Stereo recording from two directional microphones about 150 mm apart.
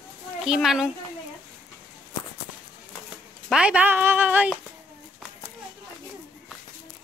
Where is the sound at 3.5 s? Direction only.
5° right (ahead or behind).